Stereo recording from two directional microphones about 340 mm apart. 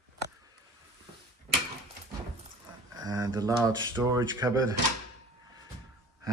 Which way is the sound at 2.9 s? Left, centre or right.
Centre.